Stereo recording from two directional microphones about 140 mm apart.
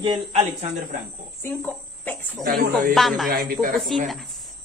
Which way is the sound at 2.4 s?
90° right.